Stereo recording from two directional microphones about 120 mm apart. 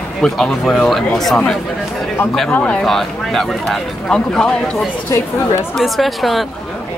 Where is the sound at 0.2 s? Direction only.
5° left (ahead or behind).